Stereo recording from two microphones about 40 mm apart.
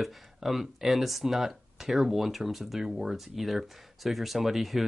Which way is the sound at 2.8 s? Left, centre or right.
Centre.